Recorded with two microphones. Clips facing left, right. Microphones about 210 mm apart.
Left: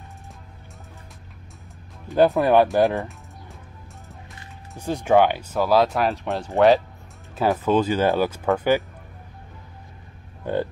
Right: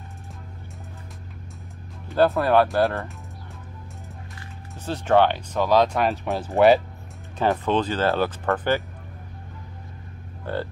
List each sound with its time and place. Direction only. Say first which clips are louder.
2.0 s speech: left 2 dB; 15° left (ahead or behind)
4.4 s speech: even; 15° left (ahead or behind)
10.4 s a sound: left 4 dB; 15° left (ahead or behind)